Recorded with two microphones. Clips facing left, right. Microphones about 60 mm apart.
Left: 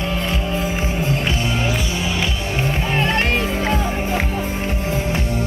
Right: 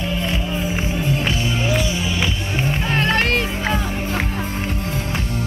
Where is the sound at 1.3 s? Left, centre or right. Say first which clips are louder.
Left 1 dB; left.